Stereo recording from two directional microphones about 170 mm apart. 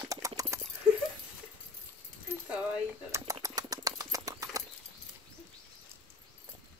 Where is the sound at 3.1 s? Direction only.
20° right (ahead or behind).